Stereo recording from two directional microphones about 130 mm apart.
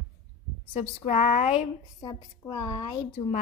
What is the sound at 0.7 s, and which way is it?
Speech, 65° left (ahead or behind).